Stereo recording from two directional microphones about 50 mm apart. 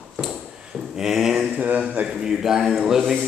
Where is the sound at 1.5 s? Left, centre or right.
Right.